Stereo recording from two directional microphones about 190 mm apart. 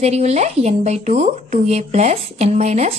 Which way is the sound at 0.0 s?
35° right (ahead or behind).